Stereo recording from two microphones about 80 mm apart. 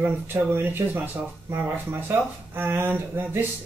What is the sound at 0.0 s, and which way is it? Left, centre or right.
Speech, right.